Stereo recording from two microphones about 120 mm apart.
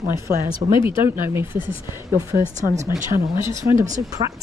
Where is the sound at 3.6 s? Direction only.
25° right (ahead or behind).